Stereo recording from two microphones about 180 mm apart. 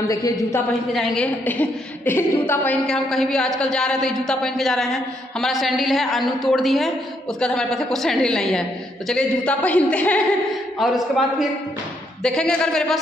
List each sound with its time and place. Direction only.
0.1 s a man's voice: 15° left (ahead or behind)
0.9 s a woman's voice: 5° left (ahead or behind)